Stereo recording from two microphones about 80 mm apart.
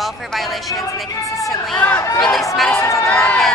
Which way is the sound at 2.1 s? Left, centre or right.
Centre.